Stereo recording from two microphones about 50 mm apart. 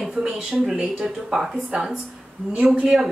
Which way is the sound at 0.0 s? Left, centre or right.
Centre.